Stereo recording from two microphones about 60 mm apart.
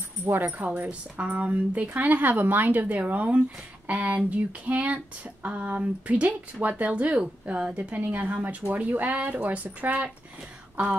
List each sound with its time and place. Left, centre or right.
0.2 s speech: right